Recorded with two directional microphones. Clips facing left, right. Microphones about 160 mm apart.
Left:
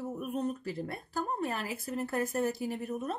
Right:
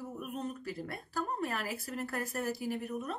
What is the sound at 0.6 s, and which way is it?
Speech, 25° left (ahead or behind).